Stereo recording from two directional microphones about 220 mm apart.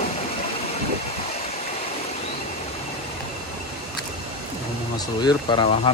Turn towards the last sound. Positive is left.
turn(degrees=20)  # may be behind; listen again after turning